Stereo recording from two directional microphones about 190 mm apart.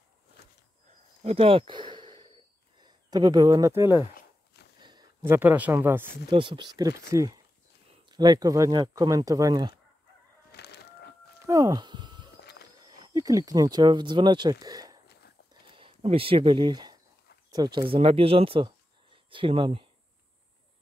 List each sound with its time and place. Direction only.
1.2 s speech: 30° right (ahead or behind); by 4.0 s 15° right (ahead or behind)
4.6 s a sound: 60° left (ahead or behind)
5.2 s speech: 10° right (ahead or behind)
6.3 s speech: 25° right (ahead or behind)
10.5 s fowl: 60° left (ahead or behind)
11.4 s a sound: 20° right (ahead or behind)
12.4 s a sound: 60° left (ahead or behind)
12.8 s speech: 20° right (ahead or behind)
15.7 s speech: 30° right (ahead or behind)